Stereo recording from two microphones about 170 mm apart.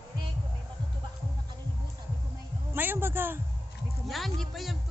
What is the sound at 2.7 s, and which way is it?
Speech, 10° right (ahead or behind).